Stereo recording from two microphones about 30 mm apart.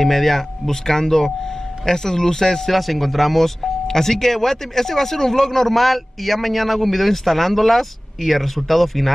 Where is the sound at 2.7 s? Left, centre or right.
Centre.